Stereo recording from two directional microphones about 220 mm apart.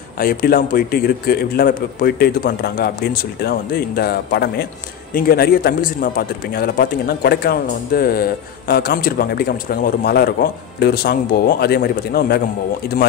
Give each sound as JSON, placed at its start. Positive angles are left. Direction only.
{"t": 0.2, "sound": "a man's voice", "side_deg": 40}